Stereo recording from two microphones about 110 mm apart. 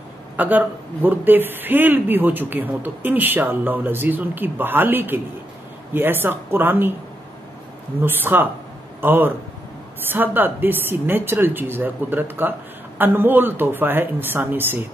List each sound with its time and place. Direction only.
0.4 s a man's voice: 15° right (ahead or behind)
8.0 s a woman's voice: 20° right (ahead or behind)